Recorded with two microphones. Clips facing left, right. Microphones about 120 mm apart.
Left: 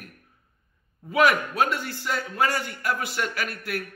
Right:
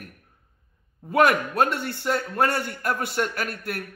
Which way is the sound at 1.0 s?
55° right (ahead or behind).